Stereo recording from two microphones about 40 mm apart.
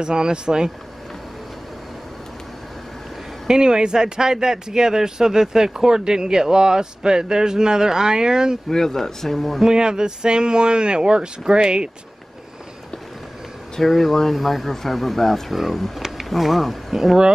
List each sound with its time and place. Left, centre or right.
0.0 s speech: right
3.4 s speech: centre
8.6 s speech: centre
9.6 s speech: centre
13.7 s speech: centre